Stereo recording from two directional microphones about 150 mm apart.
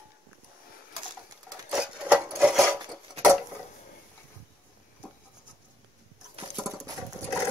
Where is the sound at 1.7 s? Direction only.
5° right (ahead or behind).